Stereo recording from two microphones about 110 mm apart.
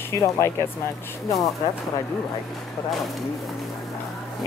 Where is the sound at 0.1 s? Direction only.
25° left (ahead or behind).